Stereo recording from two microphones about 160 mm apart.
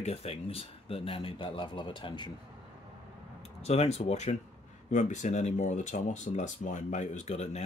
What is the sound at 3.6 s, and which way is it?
Speech, 40° left (ahead or behind).